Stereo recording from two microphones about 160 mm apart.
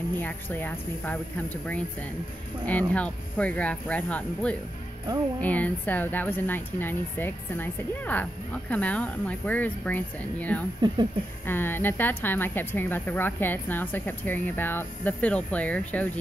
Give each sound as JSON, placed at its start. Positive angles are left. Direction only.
{"t": 0.2, "sound": "a woman's voice", "side_deg": 10}
{"t": 2.9, "sound": "a woman's voice", "side_deg": 10}
{"t": 10.8, "sound": "speech", "side_deg": -25}
{"t": 11.4, "sound": "a woman's voice", "side_deg": 15}